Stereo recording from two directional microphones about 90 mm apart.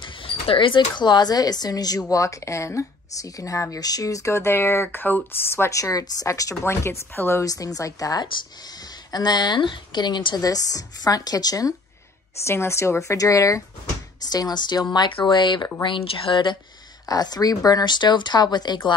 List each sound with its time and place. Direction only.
0.0 s speech: 75° left (ahead or behind); by 7.4 s 30° left (ahead or behind)
7.4 s speech: 40° left (ahead or behind)
12.4 s speech: 30° left (ahead or behind)
14.3 s speech: 50° left (ahead or behind)
15.0 s speech: 65° left (ahead or behind)
15.8 s speech: 75° left (ahead or behind)
17.1 s speech: 45° left (ahead or behind)